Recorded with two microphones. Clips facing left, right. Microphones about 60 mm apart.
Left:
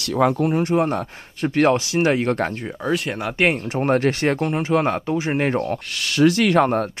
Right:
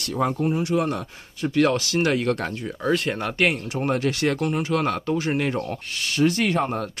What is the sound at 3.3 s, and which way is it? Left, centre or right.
Speech, left.